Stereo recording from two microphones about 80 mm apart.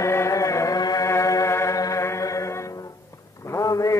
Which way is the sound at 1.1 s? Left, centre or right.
Left.